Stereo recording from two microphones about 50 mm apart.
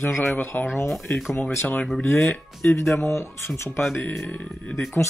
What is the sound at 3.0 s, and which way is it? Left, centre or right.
Speech, left.